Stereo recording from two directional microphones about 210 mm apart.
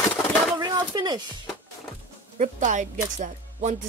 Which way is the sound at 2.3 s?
35° right (ahead or behind).